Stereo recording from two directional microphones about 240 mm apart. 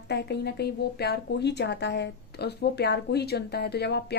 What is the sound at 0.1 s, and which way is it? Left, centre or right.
A woman's voice, left.